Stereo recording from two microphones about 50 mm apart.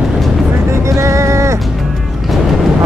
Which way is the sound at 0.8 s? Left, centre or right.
Right.